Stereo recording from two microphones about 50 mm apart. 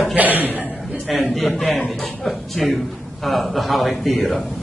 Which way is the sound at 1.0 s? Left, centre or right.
Centre.